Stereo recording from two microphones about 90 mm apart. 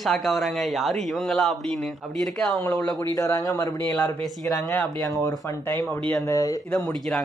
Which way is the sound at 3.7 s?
25° left (ahead or behind).